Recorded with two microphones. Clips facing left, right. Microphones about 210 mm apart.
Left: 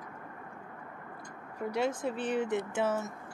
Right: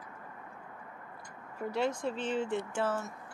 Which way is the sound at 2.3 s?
20° left (ahead or behind).